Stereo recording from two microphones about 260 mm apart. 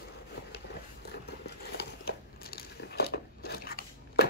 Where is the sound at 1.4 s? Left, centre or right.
Left.